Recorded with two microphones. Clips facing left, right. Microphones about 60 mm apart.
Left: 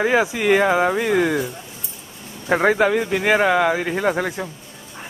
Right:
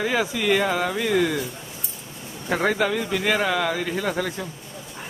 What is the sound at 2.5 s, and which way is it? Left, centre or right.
Speech, left.